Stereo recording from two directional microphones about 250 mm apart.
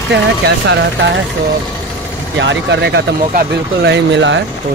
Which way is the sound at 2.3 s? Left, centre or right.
Right.